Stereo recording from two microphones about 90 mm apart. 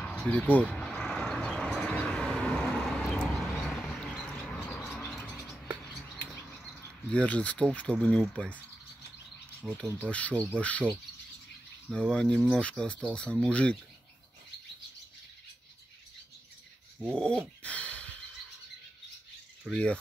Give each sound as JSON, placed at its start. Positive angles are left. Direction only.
{"t": 0.2, "sound": "speech", "side_deg": 15}
{"t": 0.7, "sound": "vehicle", "side_deg": 10}
{"t": 4.2, "sound": "a sound", "side_deg": 15}
{"t": 7.1, "sound": "speech", "side_deg": 15}
{"t": 17.0, "sound": "a sound", "side_deg": 10}
{"t": 19.7, "sound": "speech", "side_deg": 10}